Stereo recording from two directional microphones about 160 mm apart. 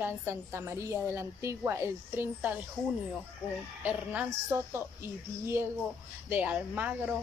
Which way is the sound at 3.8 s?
10° right (ahead or behind).